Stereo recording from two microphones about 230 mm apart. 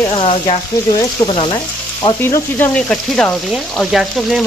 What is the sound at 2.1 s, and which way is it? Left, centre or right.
Speech, centre.